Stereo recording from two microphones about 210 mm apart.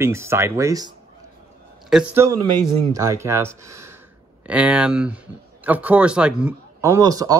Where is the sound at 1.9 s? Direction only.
10° right (ahead or behind).